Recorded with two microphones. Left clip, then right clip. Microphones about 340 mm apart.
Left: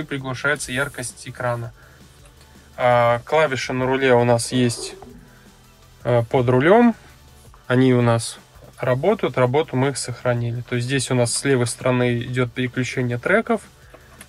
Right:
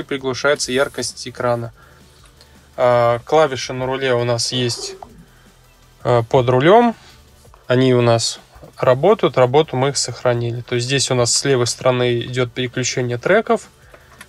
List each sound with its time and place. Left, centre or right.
0.1 s speech: centre
2.8 s speech: centre
6.0 s speech: centre